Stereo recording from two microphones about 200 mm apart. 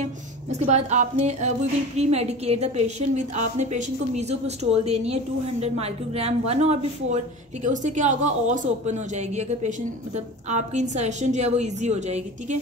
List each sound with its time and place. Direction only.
0.0 s a woman's voice: 35° right (ahead or behind)